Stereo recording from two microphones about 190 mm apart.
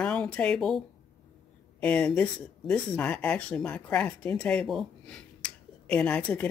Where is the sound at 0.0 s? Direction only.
5° left (ahead or behind).